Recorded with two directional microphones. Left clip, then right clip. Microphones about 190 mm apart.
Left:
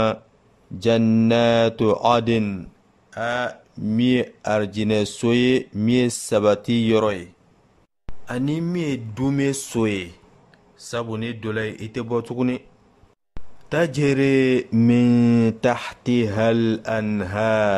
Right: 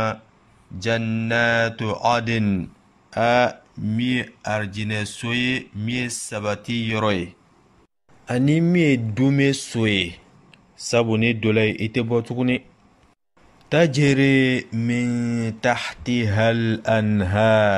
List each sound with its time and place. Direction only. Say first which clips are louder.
0.7 s speech: left 5 dB; 20° left (ahead or behind)
3.1 s speech: right 6 dB; 5° right (ahead or behind)
3.8 s speech: left 4 dB; 20° left (ahead or behind)
8.3 s speech: right 5 dB; centre (ahead or behind)
10.0 s speech: right 8 dB; 10° right (ahead or behind)
13.7 s speech: right 2 dB; 5° left (ahead or behind)